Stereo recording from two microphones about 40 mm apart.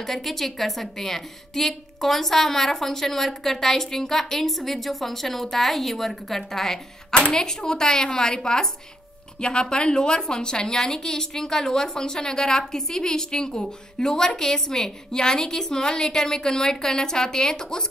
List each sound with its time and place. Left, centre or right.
0.0 s a woman's voice: centre